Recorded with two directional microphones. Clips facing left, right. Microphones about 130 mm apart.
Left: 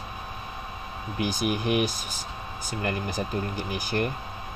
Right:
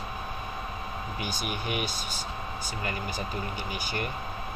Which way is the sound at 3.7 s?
45° left (ahead or behind).